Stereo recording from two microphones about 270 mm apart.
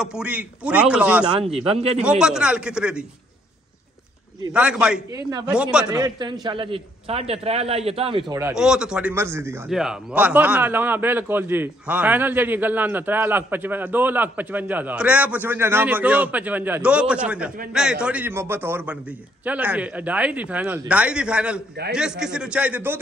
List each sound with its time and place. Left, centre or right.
0.0 s speech: centre
1.2 s speech: centre
2.0 s speech: centre
4.5 s speech: centre
5.9 s a man's voice: centre